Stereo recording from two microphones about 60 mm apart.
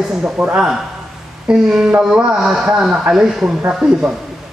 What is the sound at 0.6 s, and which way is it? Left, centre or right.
A man's voice, centre.